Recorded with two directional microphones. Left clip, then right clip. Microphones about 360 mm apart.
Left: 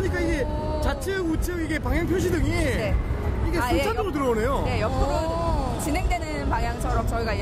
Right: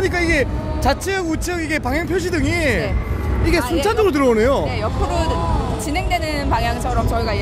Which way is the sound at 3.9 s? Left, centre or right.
Right.